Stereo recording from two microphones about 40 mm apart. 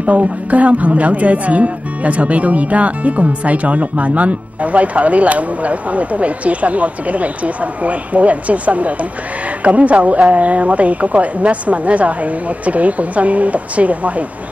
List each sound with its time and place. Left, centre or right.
0.0 s speech: right